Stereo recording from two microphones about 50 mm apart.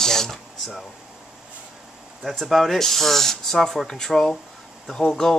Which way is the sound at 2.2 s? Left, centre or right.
Centre.